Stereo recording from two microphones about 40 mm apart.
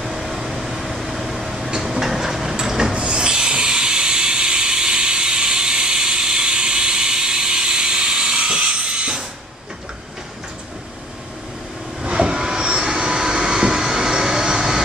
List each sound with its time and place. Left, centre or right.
0.0 s air conditioning: centre
1.8 s a sound: centre
2.9 s hiss: right
12.0 s train: right